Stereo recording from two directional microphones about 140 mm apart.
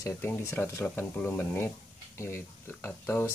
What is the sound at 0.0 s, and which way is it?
Speech, 20° left (ahead or behind).